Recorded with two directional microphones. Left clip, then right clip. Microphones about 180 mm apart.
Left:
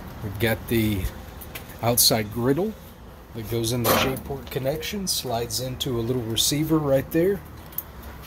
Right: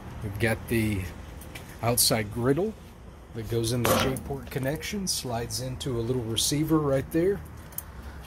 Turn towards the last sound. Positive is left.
turn(degrees=15)  # may be behind; listen again after turning